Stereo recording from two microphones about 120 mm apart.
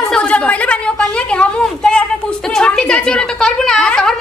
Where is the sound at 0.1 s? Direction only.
10° left (ahead or behind).